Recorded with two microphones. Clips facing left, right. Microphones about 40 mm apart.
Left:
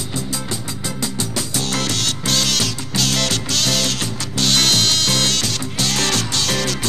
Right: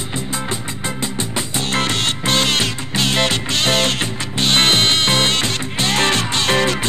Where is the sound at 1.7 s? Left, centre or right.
Right.